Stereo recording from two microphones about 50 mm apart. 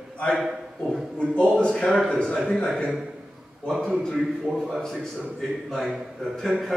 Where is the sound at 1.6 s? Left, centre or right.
Left.